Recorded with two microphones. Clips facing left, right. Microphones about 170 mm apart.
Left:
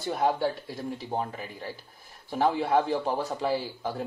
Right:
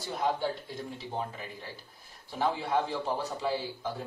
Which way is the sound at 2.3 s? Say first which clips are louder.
Left 5 dB; 55° left (ahead or behind).